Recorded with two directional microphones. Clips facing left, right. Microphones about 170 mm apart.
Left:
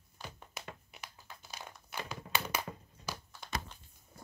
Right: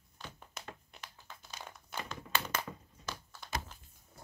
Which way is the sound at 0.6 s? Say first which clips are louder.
Left 1 dB; 5° left (ahead or behind).